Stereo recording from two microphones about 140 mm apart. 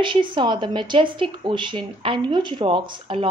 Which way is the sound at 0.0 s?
35° right (ahead or behind).